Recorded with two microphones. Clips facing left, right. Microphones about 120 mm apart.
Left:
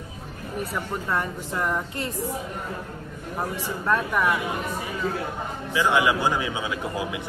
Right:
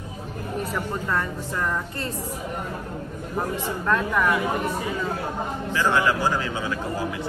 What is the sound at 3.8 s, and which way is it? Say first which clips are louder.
Speech: even; 15° left (ahead or behind).